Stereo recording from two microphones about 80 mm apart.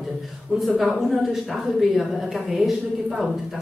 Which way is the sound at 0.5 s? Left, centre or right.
Centre.